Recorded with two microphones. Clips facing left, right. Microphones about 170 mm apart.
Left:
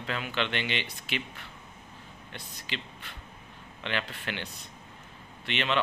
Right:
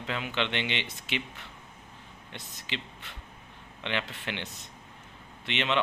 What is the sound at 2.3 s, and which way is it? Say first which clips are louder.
A man's voice: right 1 dB; 20° right (ahead or behind).